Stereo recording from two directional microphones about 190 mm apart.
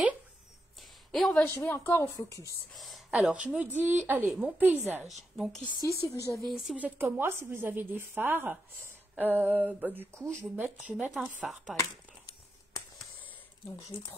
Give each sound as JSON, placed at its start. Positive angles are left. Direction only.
{"t": 1.1, "sound": "a woman's voice", "side_deg": 5}
{"t": 2.7, "sound": "speech", "side_deg": 0}
{"t": 6.0, "sound": "a woman's voice", "side_deg": 15}
{"t": 6.4, "sound": "speech", "side_deg": 0}